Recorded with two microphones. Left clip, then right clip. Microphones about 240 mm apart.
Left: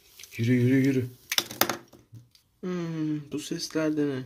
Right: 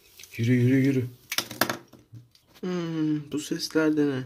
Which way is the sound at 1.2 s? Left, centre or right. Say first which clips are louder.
Left 2 dB; left.